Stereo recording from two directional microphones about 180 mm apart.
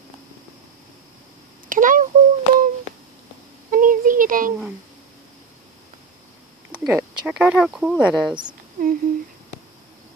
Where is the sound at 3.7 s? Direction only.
50° right (ahead or behind).